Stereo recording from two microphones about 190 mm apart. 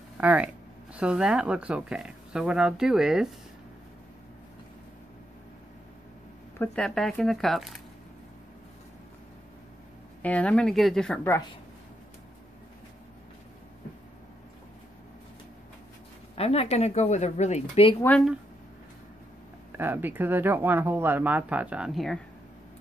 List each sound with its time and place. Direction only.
0.2 s speech: 10° right (ahead or behind)
6.6 s speech: 5° left (ahead or behind)
10.2 s speech: 5° left (ahead or behind)
16.3 s speech: 30° left (ahead or behind)
19.7 s speech: 10° right (ahead or behind)